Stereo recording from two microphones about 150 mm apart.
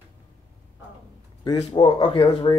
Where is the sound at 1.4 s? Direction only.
30° left (ahead or behind).